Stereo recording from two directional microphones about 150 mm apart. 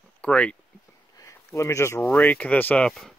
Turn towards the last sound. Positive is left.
turn(degrees=0)  # may be behind; listen again after turning